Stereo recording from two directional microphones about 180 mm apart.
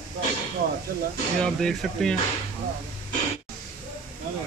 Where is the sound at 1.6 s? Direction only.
5° left (ahead or behind).